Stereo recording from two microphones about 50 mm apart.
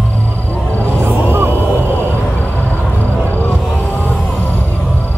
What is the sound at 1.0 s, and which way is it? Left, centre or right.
Music, right.